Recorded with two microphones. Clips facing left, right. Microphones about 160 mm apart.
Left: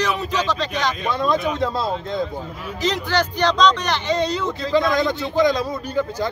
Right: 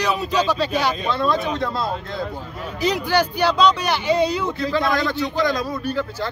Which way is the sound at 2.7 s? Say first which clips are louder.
Right 2 dB; 10° right (ahead or behind).